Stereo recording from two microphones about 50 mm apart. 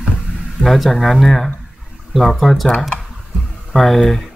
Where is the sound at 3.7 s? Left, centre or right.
Centre.